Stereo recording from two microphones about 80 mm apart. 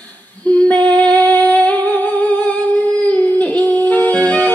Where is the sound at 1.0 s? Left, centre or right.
Centre.